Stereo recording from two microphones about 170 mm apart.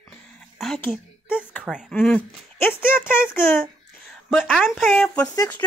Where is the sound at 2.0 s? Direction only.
10° left (ahead or behind).